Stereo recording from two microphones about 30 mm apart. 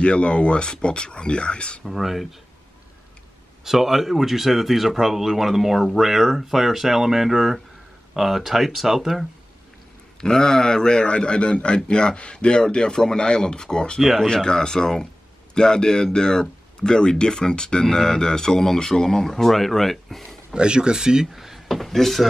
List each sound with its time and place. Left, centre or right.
0.0 s speech: left
1.9 s speech: centre
3.6 s speech: centre
10.2 s speech: centre
20.5 s speech: right
21.3 s speech: centre